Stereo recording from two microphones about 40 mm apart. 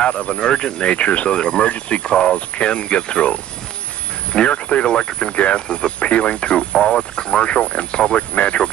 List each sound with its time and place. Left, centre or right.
0.0 s speech: left